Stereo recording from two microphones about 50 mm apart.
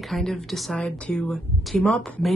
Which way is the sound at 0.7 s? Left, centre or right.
Left.